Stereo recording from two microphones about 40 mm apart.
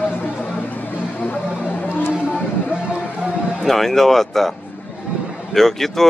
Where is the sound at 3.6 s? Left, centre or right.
Centre.